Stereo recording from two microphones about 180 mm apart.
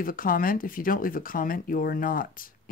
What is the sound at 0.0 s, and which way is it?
Speech, 50° left (ahead or behind).